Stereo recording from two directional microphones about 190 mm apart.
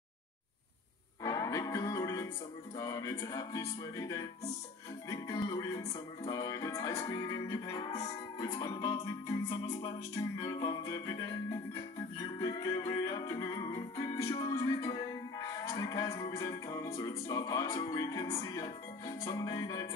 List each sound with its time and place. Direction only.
1.2 s music: 15° left (ahead or behind)